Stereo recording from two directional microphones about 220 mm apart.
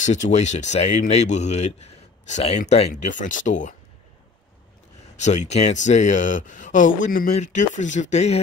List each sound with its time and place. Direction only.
0.0 s speech: 35° left (ahead or behind)
5.2 s speech: 30° left (ahead or behind)